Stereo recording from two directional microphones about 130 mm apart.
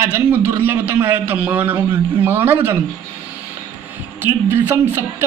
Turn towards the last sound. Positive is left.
turn(degrees=-15)  # may be behind; listen again after turning